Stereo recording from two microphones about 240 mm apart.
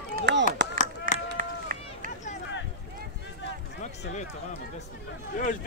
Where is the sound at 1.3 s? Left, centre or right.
Right.